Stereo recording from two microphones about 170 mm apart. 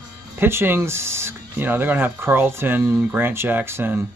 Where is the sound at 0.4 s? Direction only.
15° right (ahead or behind).